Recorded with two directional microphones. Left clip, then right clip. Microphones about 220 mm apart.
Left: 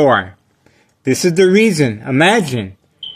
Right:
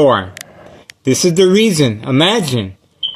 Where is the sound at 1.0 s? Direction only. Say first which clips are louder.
Right 1 dB; 5° right (ahead or behind).